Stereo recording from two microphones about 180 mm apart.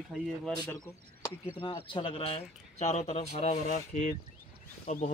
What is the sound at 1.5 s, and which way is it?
Speech, 30° left (ahead or behind).